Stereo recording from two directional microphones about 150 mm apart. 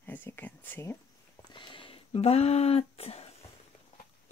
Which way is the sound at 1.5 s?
30° left (ahead or behind).